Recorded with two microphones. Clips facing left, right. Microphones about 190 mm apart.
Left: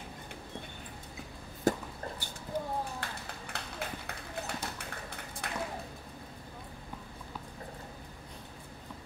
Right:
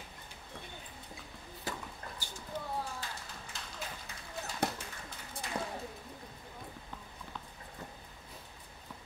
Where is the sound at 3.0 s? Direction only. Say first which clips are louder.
Left 3 dB; 60° left (ahead or behind).